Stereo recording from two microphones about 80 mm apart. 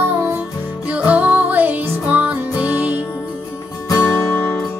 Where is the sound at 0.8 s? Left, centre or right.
Centre.